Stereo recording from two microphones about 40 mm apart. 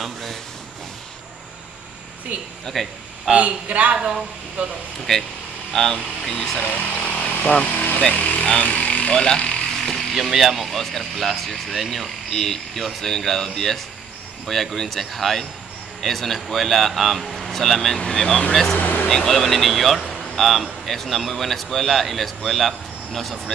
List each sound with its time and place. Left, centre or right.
0.0 s speech: centre
2.6 s speech: centre
3.3 s speech: right
3.9 s a man's voice: centre
5.1 s speech: centre
6.6 s a sound: left
7.6 s vehicle: left
8.0 s speech: left
9.8 s speech: centre
18.8 s vehicle: left
19.0 s speech: centre
20.1 s a sound: centre
20.8 s speech: centre